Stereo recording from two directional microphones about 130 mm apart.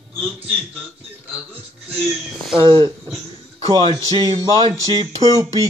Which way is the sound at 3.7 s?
40° right (ahead or behind).